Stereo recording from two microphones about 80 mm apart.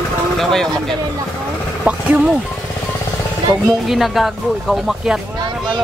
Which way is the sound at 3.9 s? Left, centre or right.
Centre.